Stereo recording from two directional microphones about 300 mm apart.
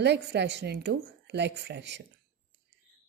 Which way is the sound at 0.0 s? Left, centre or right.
Right.